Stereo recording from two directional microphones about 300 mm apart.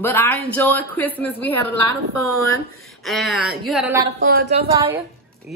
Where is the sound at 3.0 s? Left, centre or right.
Centre.